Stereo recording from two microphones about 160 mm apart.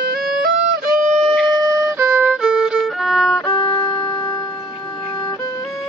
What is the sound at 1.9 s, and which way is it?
Violin, 10° right (ahead or behind).